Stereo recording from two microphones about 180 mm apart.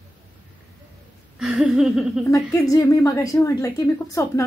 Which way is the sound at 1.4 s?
5° right (ahead or behind).